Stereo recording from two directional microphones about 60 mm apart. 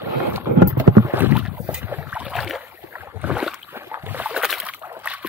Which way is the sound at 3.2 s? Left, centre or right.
Right.